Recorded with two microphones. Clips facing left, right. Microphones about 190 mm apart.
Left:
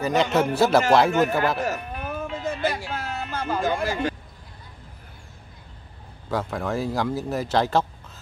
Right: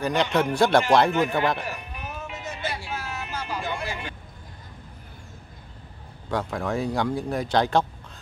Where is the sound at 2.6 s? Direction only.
45° left (ahead or behind).